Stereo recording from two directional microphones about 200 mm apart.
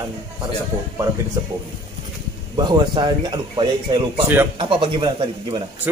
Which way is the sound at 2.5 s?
20° right (ahead or behind).